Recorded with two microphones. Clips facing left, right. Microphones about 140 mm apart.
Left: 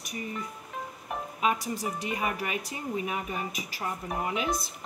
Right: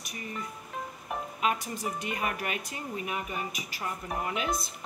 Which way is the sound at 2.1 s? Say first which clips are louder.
Left 2 dB; 25° left (ahead or behind).